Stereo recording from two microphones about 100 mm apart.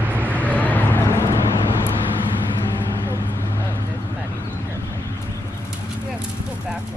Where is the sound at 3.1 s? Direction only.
25° left (ahead or behind).